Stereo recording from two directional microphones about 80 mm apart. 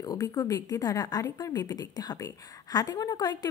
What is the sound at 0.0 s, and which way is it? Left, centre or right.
A woman's voice, left.